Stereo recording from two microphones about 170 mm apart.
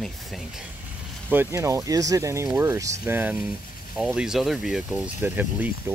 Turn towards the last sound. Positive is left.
turn(degrees=-10)  # may be behind; listen again after turning